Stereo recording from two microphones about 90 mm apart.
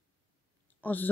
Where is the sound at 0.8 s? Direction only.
20° left (ahead or behind).